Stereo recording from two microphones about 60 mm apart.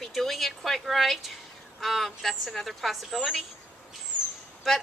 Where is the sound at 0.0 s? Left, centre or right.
Centre.